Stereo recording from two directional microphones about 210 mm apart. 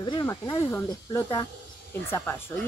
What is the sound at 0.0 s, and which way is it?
Speech, 20° left (ahead or behind).